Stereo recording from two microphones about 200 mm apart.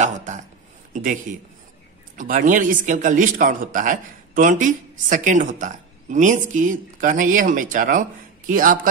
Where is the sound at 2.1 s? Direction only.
40° right (ahead or behind).